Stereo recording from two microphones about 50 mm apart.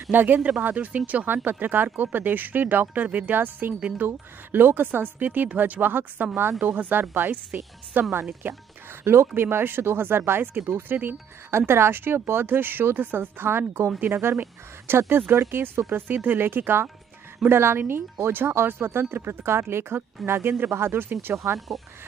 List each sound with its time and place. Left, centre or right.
0.1 s speech: right
0.4 s speech: right
9.0 s speech: right
9.3 s speech: right
13.9 s speech: right
15.9 s speech: right
21.5 s speech: centre